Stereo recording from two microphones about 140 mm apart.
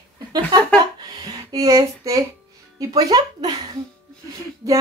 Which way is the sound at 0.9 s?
30° right (ahead or behind).